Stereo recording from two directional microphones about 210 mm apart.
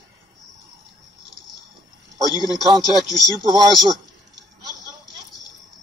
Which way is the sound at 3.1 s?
Centre (ahead or behind).